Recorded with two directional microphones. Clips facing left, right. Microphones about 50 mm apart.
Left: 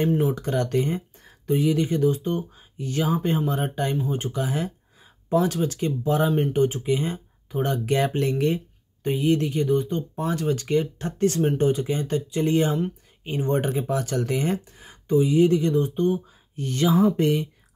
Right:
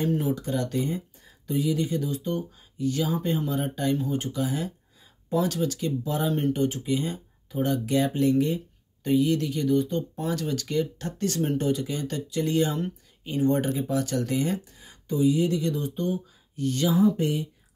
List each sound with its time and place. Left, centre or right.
0.3 s speech: left
16.9 s speech: left